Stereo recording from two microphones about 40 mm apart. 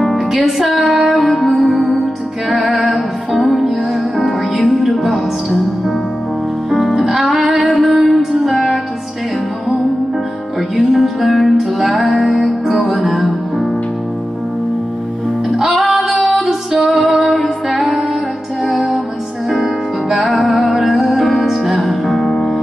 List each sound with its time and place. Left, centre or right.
0.0 s music: centre
0.4 s music: centre
4.2 s music: centre
7.0 s music: centre
10.9 s music: centre
15.5 s female singing: centre
16.9 s music: centre
20.1 s music: centre